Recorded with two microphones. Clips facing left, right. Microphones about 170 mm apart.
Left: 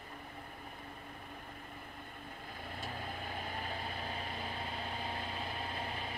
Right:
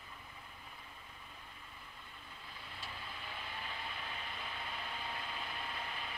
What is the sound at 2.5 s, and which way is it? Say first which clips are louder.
Vehicle: left 7 dB; 50° left (ahead or behind).